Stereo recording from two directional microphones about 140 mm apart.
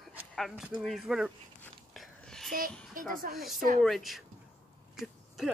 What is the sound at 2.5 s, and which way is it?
Speech, 85° right.